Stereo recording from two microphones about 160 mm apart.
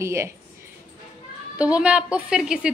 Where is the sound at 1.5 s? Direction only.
10° right (ahead or behind).